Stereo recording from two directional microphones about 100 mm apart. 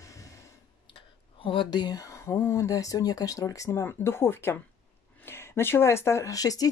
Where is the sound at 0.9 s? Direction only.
60° left (ahead or behind).